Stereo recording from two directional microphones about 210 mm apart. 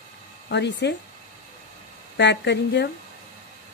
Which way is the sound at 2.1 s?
55° left (ahead or behind).